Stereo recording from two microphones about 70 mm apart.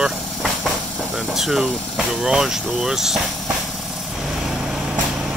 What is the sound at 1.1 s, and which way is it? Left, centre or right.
Speech, centre.